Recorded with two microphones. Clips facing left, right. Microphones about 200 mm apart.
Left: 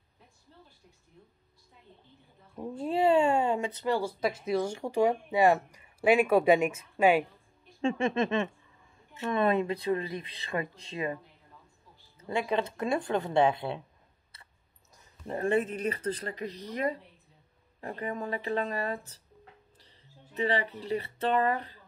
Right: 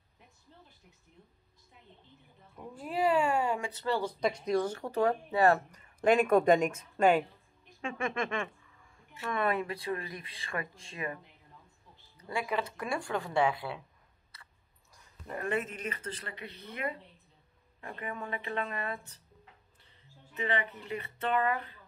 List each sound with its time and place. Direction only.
2.5 s speech: 25° left (ahead or behind); by 7.2 s 5° left (ahead or behind)
7.8 s speech: 25° left (ahead or behind)
12.2 s speech: 25° left (ahead or behind)
15.0 s a woman's voice: 30° left (ahead or behind)